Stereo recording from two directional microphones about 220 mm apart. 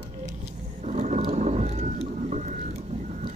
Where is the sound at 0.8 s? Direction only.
30° right (ahead or behind).